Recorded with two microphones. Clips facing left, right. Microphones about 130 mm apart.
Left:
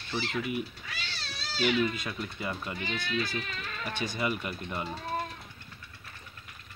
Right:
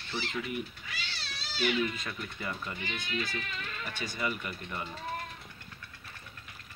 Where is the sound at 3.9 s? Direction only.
20° left (ahead or behind).